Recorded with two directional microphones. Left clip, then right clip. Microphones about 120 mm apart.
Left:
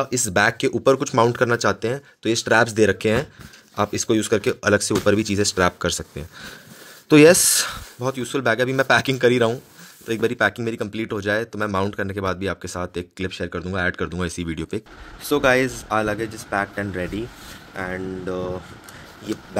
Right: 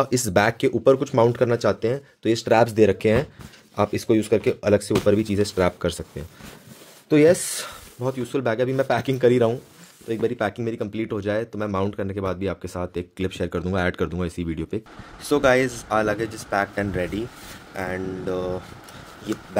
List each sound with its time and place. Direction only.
0.0 s speech: 35° right (ahead or behind)
0.4 s speech: 20° right (ahead or behind)
0.8 s speech: centre (ahead or behind)
7.2 s speech: 10° left (ahead or behind); by 9.6 s 10° right (ahead or behind)
10.0 s speech: 5° left (ahead or behind); by 13.0 s 10° right (ahead or behind)
13.3 s speech: 35° right (ahead or behind)
14.1 s speech: 5° right (ahead or behind)